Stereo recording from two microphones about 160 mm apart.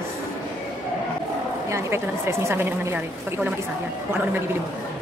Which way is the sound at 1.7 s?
15° right (ahead or behind).